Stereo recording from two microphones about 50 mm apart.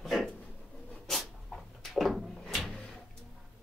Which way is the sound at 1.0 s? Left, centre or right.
Centre.